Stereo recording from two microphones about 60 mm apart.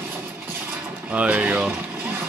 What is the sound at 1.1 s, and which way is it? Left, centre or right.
Speech, right.